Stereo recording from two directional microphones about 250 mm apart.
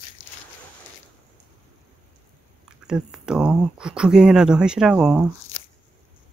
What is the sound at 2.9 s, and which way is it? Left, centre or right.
Speech, centre.